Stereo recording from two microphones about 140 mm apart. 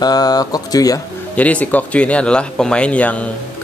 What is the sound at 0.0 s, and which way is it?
Speech, 30° left (ahead or behind).